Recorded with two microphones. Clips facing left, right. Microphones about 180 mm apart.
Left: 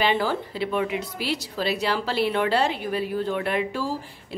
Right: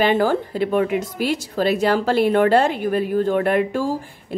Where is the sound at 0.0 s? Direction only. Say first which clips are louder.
Right 6 dB; 50° right (ahead or behind).